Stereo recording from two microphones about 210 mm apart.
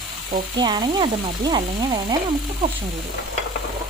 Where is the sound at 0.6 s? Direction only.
20° right (ahead or behind).